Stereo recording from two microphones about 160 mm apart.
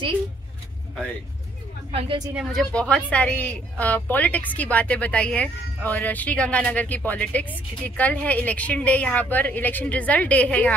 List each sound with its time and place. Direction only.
1.9 s a woman's voice: 35° right (ahead or behind)
2.3 s a woman's voice: 5° left (ahead or behind)